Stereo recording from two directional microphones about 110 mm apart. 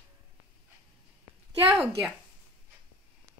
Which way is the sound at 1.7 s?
15° right (ahead or behind).